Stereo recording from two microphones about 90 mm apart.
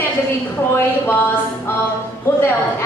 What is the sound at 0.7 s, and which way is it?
Speech, 25° left (ahead or behind).